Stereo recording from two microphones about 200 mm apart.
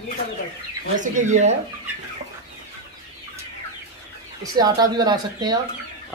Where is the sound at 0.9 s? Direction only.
40° right (ahead or behind).